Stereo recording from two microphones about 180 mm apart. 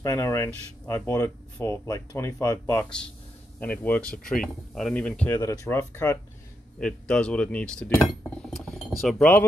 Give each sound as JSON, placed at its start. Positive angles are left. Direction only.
{"t": 0.0, "sound": "speech", "side_deg": 20}
{"t": 5.4, "sound": "speech", "side_deg": 15}
{"t": 8.1, "sound": "cutlery", "side_deg": 5}